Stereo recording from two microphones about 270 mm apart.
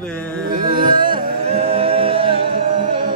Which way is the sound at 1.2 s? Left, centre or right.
Right.